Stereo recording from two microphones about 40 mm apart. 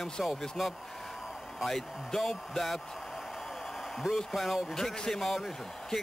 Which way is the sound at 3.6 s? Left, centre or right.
Centre.